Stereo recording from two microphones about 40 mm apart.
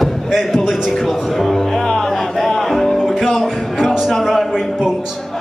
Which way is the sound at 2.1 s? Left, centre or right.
Centre.